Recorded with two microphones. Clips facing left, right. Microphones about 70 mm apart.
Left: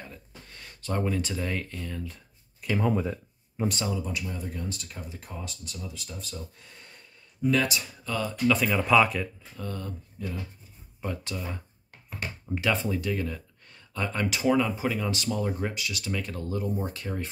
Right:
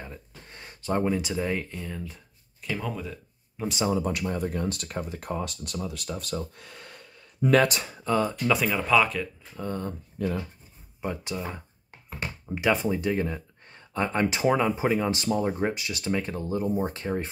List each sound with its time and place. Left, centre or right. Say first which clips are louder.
0.0 s a sound: right 3 dB; right; by 2.8 s centre
2.8 s speech: left 7 dB; left
4.0 s speech: right 6 dB; right
7.6 s speech: right 5 dB; right
8.0 s speech: right 7 dB; right
8.5 s speech: left 1 dB; centre
9.6 s speech: right 4 dB; right
10.2 s speech: right 8 dB; right
11.0 s speech: right 3 dB; centre